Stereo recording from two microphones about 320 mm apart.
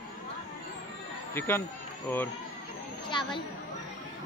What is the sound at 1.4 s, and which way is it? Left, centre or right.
Speech, centre.